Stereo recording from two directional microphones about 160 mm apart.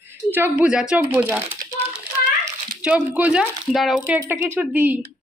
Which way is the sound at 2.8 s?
10° right (ahead or behind).